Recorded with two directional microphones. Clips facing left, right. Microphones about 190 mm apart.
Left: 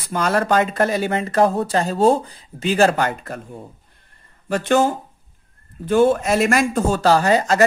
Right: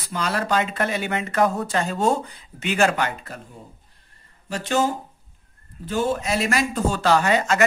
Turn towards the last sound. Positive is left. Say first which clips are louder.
# left 4 dB
turn(degrees=35)  # may be behind; listen again after turning